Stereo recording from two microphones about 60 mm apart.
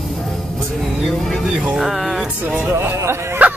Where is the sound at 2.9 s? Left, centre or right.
Right.